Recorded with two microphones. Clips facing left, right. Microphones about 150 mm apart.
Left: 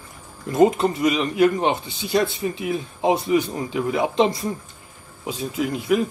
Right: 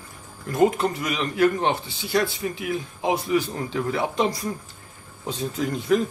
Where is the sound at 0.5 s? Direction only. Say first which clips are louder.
Left 3 dB; 25° left (ahead or behind).